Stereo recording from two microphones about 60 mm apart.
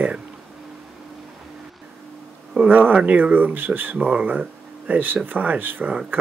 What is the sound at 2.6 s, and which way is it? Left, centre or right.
Speech, right.